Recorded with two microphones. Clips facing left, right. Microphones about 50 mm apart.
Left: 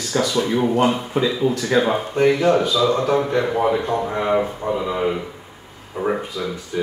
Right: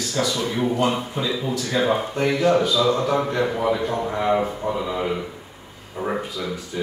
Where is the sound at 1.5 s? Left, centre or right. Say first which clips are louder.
Left 3 dB; left.